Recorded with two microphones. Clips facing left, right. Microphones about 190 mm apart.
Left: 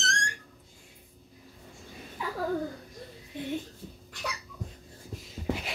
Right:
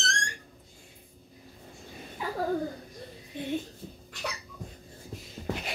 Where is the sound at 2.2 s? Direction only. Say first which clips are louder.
Right 1 dB; 35° right (ahead or behind).